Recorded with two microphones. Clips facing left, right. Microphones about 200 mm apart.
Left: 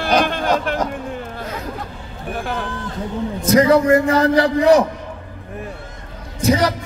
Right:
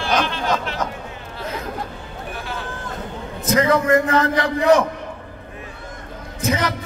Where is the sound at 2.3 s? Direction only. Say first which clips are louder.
Left 7 dB; 50° left (ahead or behind).